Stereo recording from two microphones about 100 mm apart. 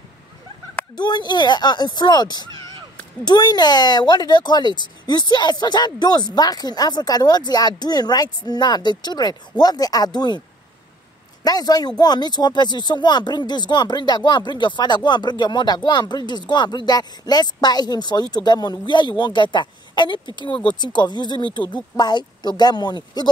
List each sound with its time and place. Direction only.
0.9 s speech: 45° left (ahead or behind)
11.4 s speech: 40° left (ahead or behind)